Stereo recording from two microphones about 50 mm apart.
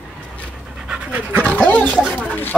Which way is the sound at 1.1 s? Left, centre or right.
Right.